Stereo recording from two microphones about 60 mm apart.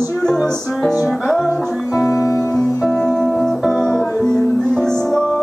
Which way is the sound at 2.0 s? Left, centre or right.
Left.